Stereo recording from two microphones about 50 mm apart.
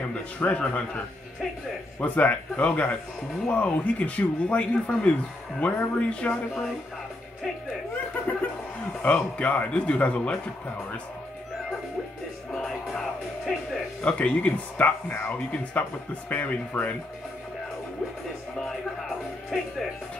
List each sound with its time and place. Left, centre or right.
0.4 s speech: left
9.0 s speech: left
14.0 s speech: left
19.5 s speech: centre